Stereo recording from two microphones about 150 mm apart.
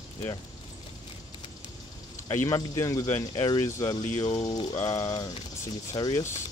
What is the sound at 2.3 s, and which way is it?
Speech, 20° left (ahead or behind).